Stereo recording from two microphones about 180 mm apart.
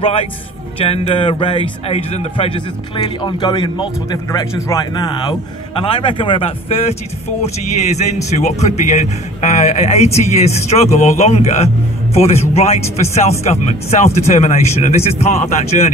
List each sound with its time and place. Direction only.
0.0 s a man's voice: 30° left (ahead or behind)